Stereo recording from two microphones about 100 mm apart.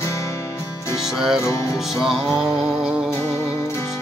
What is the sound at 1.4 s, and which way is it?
Music, 30° left (ahead or behind).